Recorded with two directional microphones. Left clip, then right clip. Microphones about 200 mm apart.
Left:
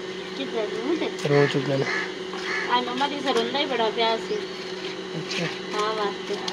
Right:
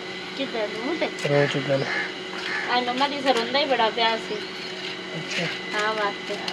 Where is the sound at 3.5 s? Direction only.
5° left (ahead or behind).